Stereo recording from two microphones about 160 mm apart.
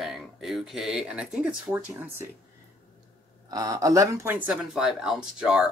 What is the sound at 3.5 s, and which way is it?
Speech, 20° right (ahead or behind).